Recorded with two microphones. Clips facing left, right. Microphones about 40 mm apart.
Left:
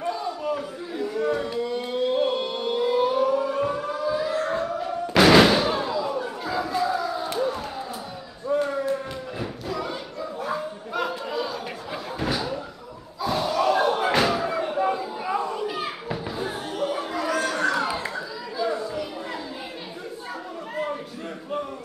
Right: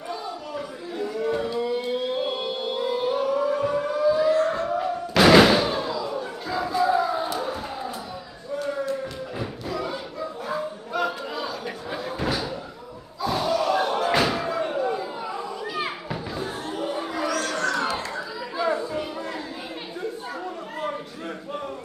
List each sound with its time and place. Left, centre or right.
0.6 s chatter: centre
1.6 s a sound: centre
3.9 s siren: centre
5.1 s thunk: centre
5.8 s crowd: centre
6.9 s crowd: centre
9.4 s thump: centre
10.4 s a sound: centre
13.2 s slam: centre
16.1 s children playing: centre
16.8 s a sound: centre
17.3 s crowd: centre
18.6 s chatter: right